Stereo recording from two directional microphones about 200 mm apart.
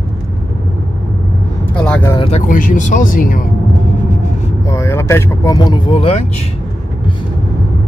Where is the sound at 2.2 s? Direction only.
30° left (ahead or behind).